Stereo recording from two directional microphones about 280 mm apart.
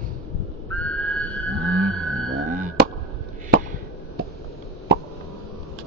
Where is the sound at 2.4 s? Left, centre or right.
Right.